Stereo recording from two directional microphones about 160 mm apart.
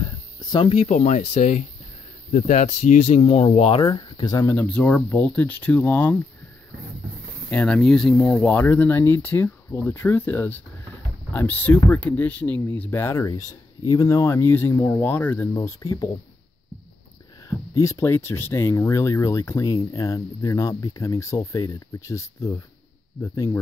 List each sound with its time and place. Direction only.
0.4 s speech: 25° left (ahead or behind)
0.8 s speech: 50° left (ahead or behind); by 4.6 s 25° left (ahead or behind)
4.6 s speech: 10° left (ahead or behind)
7.4 s speech: 5° left (ahead or behind)
17.5 s speech: 20° left (ahead or behind)